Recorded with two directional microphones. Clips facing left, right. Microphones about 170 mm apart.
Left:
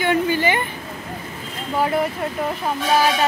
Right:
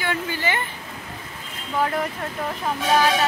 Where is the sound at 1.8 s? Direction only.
10° left (ahead or behind).